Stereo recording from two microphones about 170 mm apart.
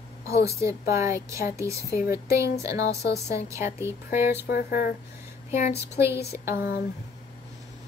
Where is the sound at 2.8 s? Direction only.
75° left (ahead or behind).